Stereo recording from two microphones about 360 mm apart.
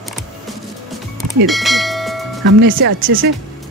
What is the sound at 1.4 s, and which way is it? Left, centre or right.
Bell, centre.